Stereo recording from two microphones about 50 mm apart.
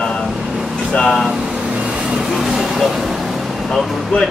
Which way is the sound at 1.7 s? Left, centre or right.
Centre.